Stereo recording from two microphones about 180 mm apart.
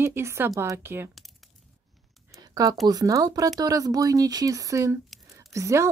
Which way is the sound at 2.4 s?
20° right (ahead or behind).